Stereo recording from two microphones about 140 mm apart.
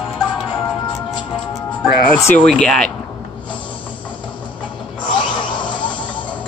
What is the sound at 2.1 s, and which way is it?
Speech, 5° left (ahead or behind).